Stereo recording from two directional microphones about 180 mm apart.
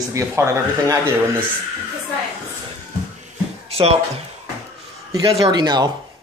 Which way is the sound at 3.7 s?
35° right (ahead or behind).